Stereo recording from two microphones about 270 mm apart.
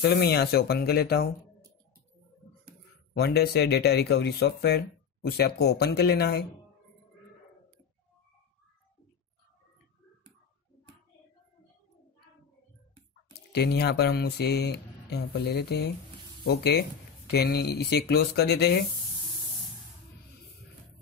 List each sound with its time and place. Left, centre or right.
0.0 s speech: left
3.2 s speech: left
13.5 s speech: left